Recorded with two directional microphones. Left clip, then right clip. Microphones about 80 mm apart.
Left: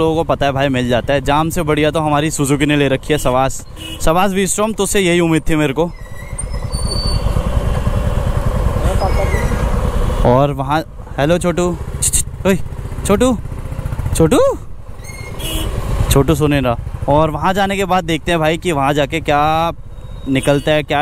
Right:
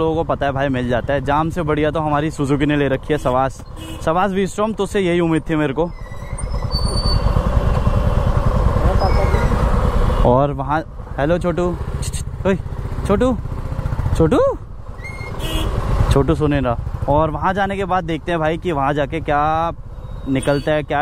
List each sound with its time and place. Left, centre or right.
0.0 s speech: left
6.7 s train: centre
7.0 s vehicle: centre
10.2 s speech: left
15.8 s vehicle: centre
16.1 s speech: left